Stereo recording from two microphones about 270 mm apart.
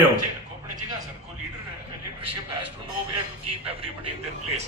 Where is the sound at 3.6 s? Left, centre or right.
Right.